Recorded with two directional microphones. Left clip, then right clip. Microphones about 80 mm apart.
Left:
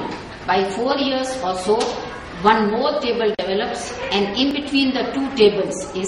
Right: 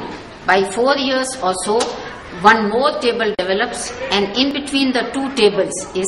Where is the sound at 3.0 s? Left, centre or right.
Right.